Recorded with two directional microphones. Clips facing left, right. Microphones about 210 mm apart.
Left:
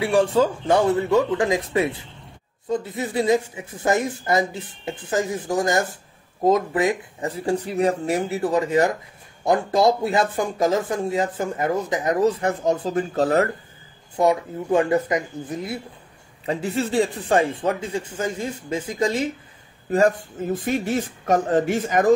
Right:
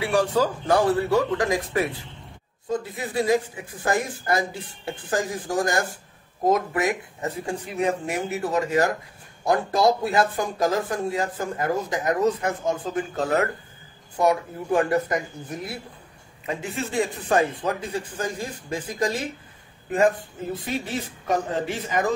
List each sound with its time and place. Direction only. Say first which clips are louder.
0.0 s speech: left 3 dB; 25° left (ahead or behind)
14.1 s speech: left 2 dB; 25° left (ahead or behind)
20.5 s speech: left 7 dB; 45° left (ahead or behind)